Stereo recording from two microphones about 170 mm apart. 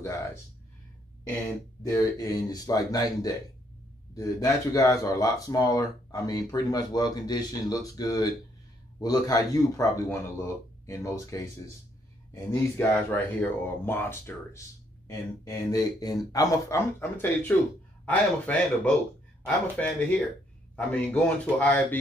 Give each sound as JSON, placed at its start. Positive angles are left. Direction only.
{"t": 1.8, "sound": "speech", "side_deg": 20}